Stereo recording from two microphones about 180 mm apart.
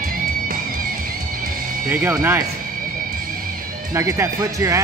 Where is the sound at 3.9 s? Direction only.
15° right (ahead or behind).